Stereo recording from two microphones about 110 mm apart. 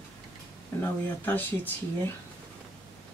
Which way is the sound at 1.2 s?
15° left (ahead or behind).